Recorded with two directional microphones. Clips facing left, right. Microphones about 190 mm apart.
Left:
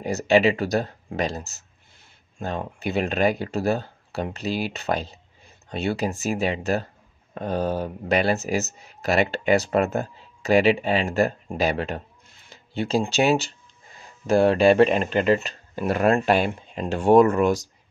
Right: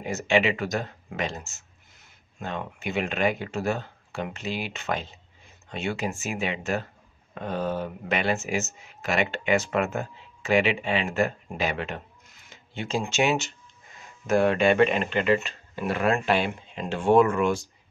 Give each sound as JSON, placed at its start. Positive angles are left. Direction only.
{"t": 0.0, "sound": "speech", "side_deg": 35}